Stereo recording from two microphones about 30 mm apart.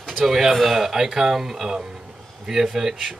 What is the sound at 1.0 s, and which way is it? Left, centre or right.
Speech, centre.